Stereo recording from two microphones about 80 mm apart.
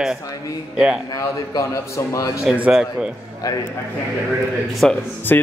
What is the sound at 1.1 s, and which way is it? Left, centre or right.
A man's voice, left.